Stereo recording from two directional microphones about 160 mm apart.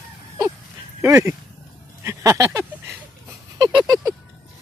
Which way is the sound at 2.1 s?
20° right (ahead or behind).